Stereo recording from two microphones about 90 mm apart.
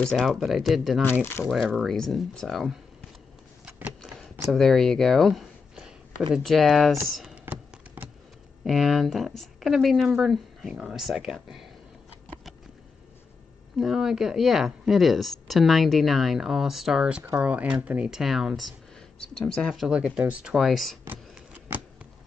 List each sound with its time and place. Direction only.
0.0 s speech: centre (ahead or behind)
3.6 s a sound: 10° right (ahead or behind)
4.5 s speech: 5° left (ahead or behind)
7.4 s typing: 20° right (ahead or behind)
8.6 s speech: centre (ahead or behind)
13.7 s speech: 5° right (ahead or behind)
19.4 s speech: 15° left (ahead or behind)
19.7 s speech: 5° right (ahead or behind)